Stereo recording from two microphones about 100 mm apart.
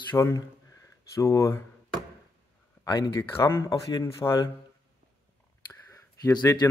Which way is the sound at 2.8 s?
45° left (ahead or behind).